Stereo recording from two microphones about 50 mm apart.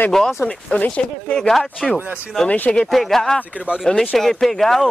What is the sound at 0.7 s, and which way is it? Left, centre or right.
Speech, left.